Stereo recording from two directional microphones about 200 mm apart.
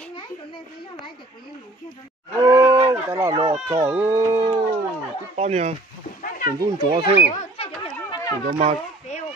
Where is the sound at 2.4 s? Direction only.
15° right (ahead or behind).